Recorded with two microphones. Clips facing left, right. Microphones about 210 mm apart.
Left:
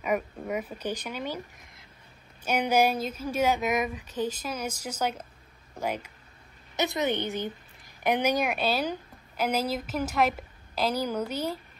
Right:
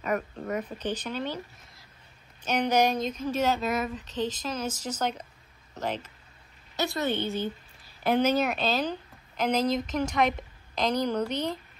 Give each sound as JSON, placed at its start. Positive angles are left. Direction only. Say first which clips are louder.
{"t": 0.0, "sound": "speech", "louder": "left 1 dB", "side_deg": 10}
{"t": 2.4, "sound": "a woman's voice", "louder": "even", "side_deg": 10}